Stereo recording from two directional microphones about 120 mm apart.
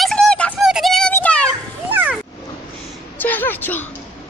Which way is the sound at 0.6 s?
5° right (ahead or behind).